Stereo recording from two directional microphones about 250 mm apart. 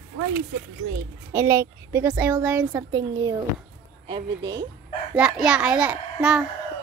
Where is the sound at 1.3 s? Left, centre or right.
Centre.